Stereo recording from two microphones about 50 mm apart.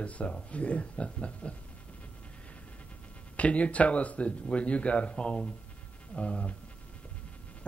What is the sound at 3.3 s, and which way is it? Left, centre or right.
A man's voice, left.